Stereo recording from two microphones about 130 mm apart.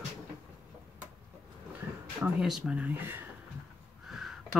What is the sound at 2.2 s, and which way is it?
Speech, 5° right (ahead or behind).